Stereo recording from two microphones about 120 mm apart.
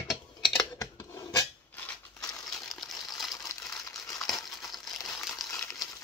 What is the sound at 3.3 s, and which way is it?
Crumpling, 25° left (ahead or behind).